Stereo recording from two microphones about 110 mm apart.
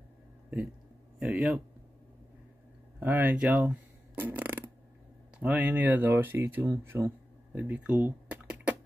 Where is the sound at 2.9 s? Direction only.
15° right (ahead or behind).